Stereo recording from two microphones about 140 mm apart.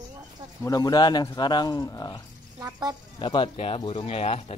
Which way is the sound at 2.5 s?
25° right (ahead or behind).